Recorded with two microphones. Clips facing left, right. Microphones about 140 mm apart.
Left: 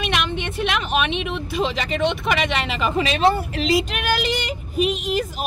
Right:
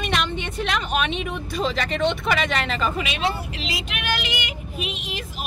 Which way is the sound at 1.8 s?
Centre (ahead or behind).